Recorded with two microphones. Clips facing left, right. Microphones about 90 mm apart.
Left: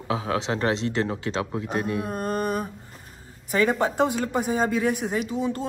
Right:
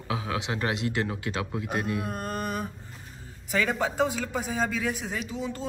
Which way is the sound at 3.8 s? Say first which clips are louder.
Left 4 dB; 50° left (ahead or behind).